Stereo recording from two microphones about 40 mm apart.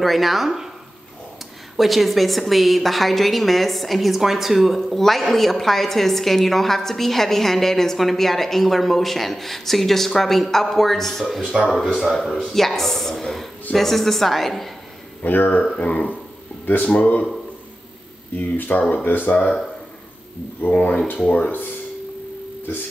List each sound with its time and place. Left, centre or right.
0.0 s a woman's voice: centre
1.8 s a woman's voice: centre
11.4 s speech: centre
11.7 s a woman's voice: centre
15.2 s speech: left
15.7 s speech: left
18.3 s speech: left
20.6 s speech: left